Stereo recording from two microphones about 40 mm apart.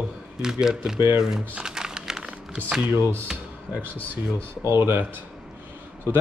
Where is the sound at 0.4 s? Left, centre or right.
Centre.